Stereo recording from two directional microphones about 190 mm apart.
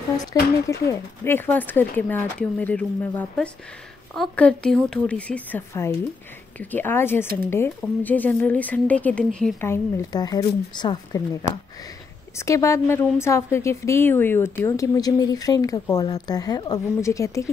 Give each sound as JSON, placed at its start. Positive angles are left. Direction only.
{"t": 0.2, "sound": "speech", "side_deg": 20}
{"t": 12.4, "sound": "a woman's voice", "side_deg": 15}